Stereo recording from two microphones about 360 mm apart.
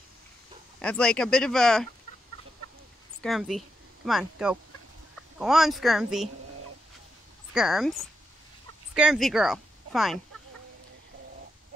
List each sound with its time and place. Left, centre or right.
0.7 s speech: centre
3.2 s speech: centre
7.5 s speech: centre